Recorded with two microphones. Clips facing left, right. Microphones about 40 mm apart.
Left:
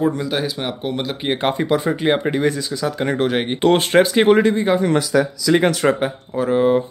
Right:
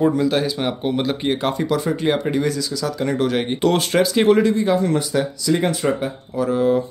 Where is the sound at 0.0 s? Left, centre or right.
Centre.